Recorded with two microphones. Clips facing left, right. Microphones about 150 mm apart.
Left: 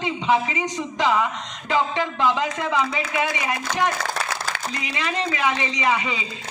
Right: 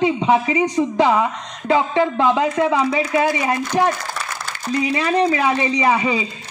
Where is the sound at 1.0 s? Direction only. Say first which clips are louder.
Right 3 dB; 50° right (ahead or behind).